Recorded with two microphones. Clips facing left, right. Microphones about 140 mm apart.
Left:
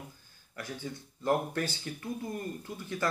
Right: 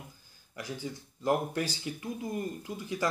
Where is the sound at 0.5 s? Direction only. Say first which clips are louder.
Right 1 dB; 10° right (ahead or behind).